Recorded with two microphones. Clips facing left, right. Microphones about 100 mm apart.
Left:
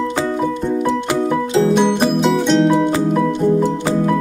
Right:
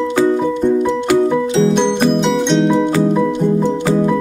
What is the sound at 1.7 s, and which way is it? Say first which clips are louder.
Music: right 1 dB; 5° left (ahead or behind).